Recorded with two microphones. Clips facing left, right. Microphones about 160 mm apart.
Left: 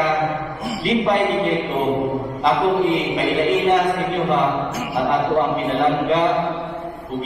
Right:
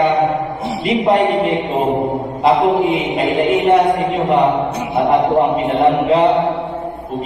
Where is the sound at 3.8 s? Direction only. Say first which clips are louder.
Right 5 dB; 30° right (ahead or behind).